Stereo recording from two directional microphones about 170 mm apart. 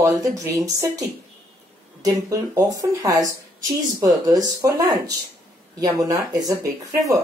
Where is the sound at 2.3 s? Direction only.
20° right (ahead or behind).